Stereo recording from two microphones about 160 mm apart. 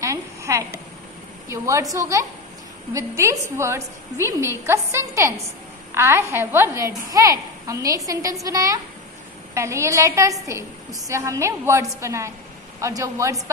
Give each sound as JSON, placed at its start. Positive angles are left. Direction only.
{"t": 0.0, "sound": "a woman's voice", "side_deg": -20}